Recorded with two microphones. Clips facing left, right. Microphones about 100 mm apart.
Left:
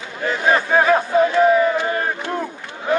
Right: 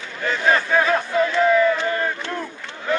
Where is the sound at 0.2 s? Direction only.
20° left (ahead or behind).